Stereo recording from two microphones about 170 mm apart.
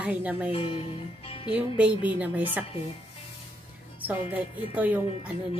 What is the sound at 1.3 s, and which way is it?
Music, 35° left (ahead or behind).